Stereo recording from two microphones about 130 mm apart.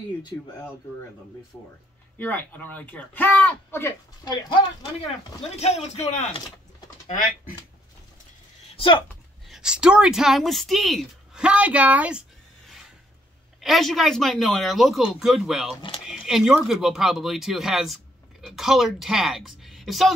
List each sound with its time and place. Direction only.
0.3 s speech: 15° left (ahead or behind)
2.1 s speech: 10° left (ahead or behind)
4.2 s speech: 35° left (ahead or behind)
5.6 s speech: 55° left (ahead or behind)
8.7 s speech: 40° left (ahead or behind)
9.5 s a woman's voice: 5° right (ahead or behind)
13.6 s a woman's voice: centre (ahead or behind)